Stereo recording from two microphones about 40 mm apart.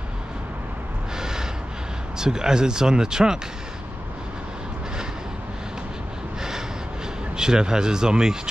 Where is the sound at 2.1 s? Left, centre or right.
Centre.